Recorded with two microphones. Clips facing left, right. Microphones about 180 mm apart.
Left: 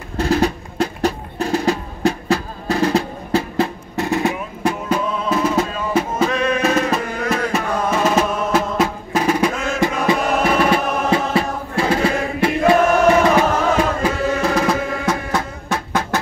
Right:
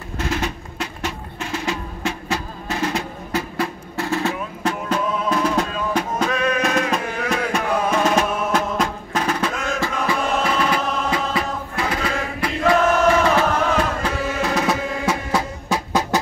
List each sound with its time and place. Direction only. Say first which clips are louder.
0.2 s music: left 8 dB; 35° left (ahead or behind); by 9.8 s 5° left (ahead or behind)
10.0 s chant: left 3 dB; 25° left (ahead or behind)
13.2 s music: left 3 dB; 15° left (ahead or behind)
14.4 s music: even; centre (ahead or behind)